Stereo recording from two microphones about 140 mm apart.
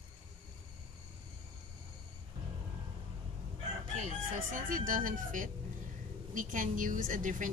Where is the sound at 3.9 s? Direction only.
60° right (ahead or behind).